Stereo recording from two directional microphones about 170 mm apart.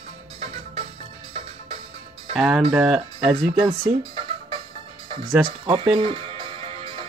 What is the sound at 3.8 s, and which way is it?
Music, 30° right (ahead or behind).